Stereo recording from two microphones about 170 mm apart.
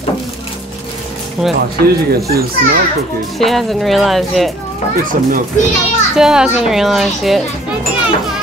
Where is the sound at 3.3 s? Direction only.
Centre (ahead or behind).